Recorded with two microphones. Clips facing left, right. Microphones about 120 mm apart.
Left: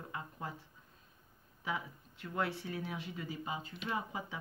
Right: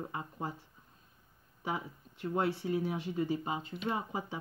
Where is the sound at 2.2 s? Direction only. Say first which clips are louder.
Right 5 dB; 35° right (ahead or behind).